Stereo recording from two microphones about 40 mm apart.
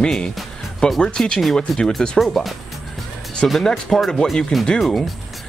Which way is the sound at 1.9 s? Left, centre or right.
Centre.